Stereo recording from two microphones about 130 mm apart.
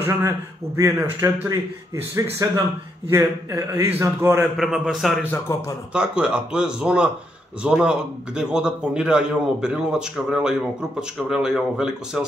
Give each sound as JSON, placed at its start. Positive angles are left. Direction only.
{"t": 0.0, "sound": "a man's voice", "side_deg": -25}
{"t": 4.6, "sound": "a man's voice", "side_deg": -5}
{"t": 5.3, "sound": "a man's voice", "side_deg": 20}
{"t": 5.9, "sound": "a man's voice", "side_deg": -10}